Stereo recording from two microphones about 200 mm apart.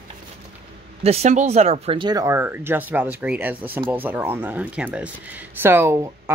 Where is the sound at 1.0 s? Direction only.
30° right (ahead or behind).